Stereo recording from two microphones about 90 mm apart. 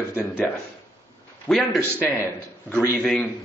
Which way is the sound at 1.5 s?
10° left (ahead or behind).